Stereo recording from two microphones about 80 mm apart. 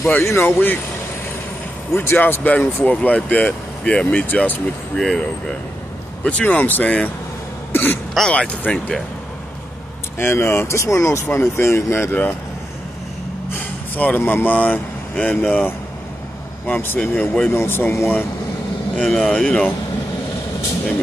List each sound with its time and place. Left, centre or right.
0.0 s speech: left
2.0 s speech: left
4.9 s speech: centre; by 8.0 s left
8.1 s speech: centre
10.1 s speech: left
13.6 s speech: centre
18.9 s speech: centre
19.3 s speech: centre